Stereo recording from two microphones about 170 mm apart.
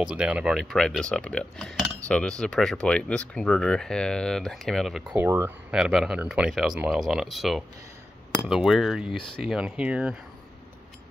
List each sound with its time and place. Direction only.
0.0 s speech: 5° right (ahead or behind)
5.1 s speech: 15° right (ahead or behind)
5.8 s speech: 5° right (ahead or behind)